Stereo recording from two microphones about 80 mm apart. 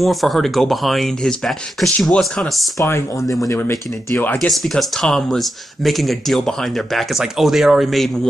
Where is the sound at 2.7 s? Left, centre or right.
Left.